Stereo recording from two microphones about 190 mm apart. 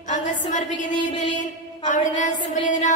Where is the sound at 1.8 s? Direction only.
40° left (ahead or behind).